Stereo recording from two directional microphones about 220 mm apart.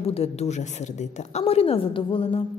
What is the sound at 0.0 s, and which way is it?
A woman's voice, 25° left (ahead or behind).